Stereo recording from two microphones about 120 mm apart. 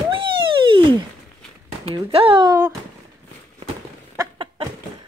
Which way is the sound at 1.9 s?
50° right (ahead or behind).